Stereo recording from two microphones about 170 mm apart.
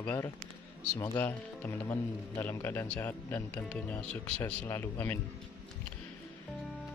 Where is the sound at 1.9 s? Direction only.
15° left (ahead or behind).